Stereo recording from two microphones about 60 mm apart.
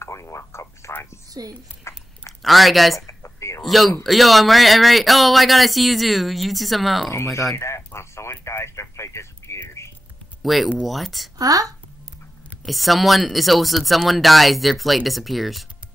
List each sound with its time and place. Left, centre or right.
0.0 s a sound: left
1.4 s a child's voice: right
1.9 s biting: left
2.4 s speech: centre
3.1 s a sound: left
3.6 s speech: centre
7.5 s a sound: left
10.4 s speech: centre
11.3 s speech: right
12.6 s speech: centre